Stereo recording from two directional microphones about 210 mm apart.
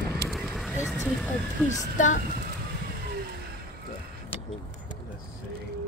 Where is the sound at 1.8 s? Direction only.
35° left (ahead or behind).